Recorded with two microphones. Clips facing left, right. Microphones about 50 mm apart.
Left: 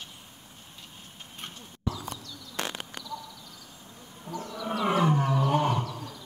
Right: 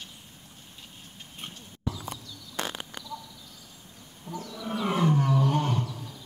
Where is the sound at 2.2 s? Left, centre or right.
Centre.